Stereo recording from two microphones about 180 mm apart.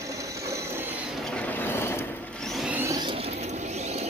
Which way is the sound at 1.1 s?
5° left (ahead or behind).